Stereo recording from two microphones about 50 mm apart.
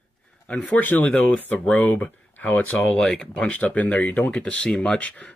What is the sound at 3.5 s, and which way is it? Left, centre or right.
Speech, left.